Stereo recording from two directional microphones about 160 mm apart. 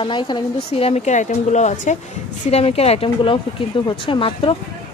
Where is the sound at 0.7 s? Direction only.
40° left (ahead or behind).